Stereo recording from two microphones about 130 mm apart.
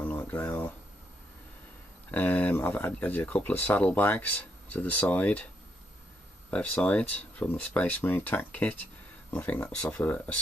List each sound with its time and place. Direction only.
0.0 s a sound: 15° left (ahead or behind)
2.0 s speech: 15° left (ahead or behind)
6.5 s speech: 10° left (ahead or behind)